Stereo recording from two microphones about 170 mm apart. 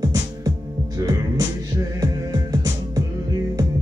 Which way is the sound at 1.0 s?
20° right (ahead or behind).